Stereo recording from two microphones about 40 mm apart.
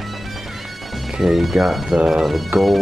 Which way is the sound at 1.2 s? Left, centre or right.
Centre.